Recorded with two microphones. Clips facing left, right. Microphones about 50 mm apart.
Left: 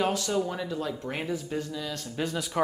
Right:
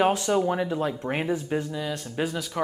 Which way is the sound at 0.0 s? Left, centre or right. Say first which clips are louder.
Right 5 dB; right.